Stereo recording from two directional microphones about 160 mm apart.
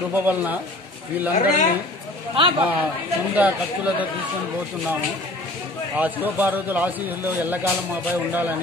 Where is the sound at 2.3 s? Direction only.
30° right (ahead or behind).